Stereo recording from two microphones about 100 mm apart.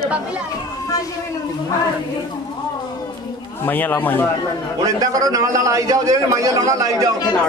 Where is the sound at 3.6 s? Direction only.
20° left (ahead or behind).